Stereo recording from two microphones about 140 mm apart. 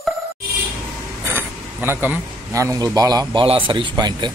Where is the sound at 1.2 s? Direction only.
15° right (ahead or behind); by 4.3 s 30° right (ahead or behind).